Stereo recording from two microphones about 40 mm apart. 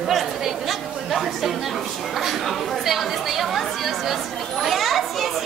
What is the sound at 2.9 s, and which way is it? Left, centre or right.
Chatter, centre.